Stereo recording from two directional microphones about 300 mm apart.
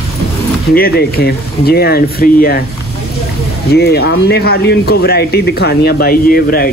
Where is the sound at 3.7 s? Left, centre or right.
Left.